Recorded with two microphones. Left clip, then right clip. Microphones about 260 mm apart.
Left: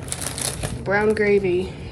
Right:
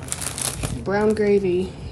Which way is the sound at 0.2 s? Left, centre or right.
Centre.